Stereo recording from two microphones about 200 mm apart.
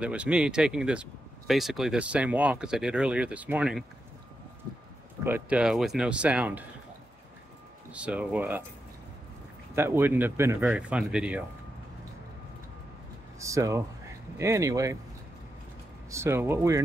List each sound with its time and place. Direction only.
0.0 s speech: 5° right (ahead or behind)
5.2 s speech: 10° right (ahead or behind)
7.9 s speech: 5° right (ahead or behind)
9.8 s speech: 10° right (ahead or behind)
13.4 s speech: 15° right (ahead or behind)
16.1 s speech: 15° right (ahead or behind)